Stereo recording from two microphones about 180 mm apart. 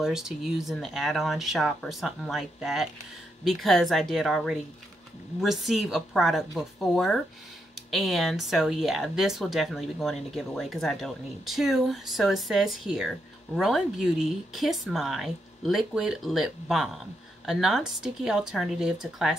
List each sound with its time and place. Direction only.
0.0 s speech: 5° right (ahead or behind)